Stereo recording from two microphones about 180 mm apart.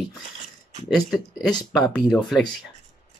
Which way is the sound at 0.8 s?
5° left (ahead or behind).